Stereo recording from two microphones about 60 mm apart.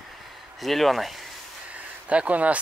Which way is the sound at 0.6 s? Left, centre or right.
Centre.